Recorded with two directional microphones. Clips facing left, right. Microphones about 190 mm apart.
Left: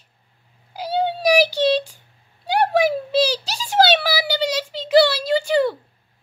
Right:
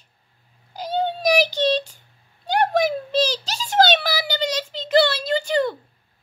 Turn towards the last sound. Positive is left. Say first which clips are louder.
# left 3 dB
turn(degrees=10)  # may be behind; listen again after turning